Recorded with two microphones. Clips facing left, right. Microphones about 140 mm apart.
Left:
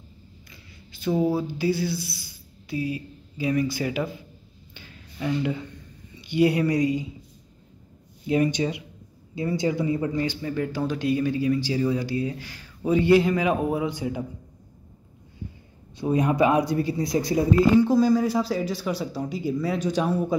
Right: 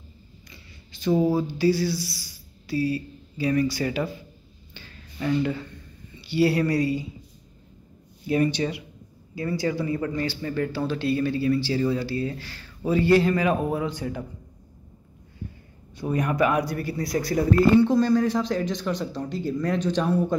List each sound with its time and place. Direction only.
1.3 s speech: 10° left (ahead or behind)
4.7 s a sound: 10° left (ahead or behind)
6.2 s speech: 15° left (ahead or behind)
8.3 s speech: 15° left (ahead or behind)
16.0 s speech: 20° left (ahead or behind)